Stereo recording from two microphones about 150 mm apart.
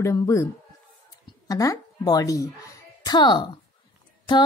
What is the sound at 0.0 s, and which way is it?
Speech, 20° left (ahead or behind).